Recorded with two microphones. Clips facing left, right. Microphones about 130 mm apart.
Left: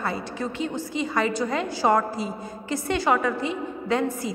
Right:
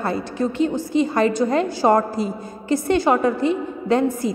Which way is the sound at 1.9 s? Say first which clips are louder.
Right 4 dB; 45° right (ahead or behind).